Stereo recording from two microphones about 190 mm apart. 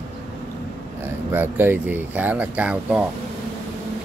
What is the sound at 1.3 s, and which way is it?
Speech, 10° right (ahead or behind).